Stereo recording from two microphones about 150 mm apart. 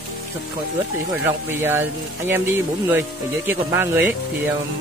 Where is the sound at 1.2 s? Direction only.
15° right (ahead or behind).